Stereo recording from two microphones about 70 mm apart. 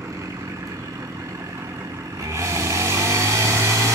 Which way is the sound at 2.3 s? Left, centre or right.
Right.